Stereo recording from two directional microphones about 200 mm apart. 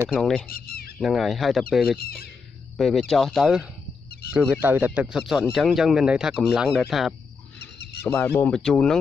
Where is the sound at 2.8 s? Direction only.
Centre (ahead or behind).